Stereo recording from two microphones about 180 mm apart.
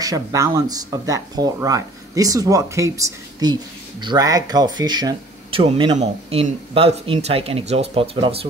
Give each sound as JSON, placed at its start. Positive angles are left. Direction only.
{"t": 0.0, "sound": "speech", "side_deg": -20}